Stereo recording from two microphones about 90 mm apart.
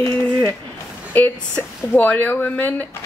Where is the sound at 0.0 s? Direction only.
20° left (ahead or behind).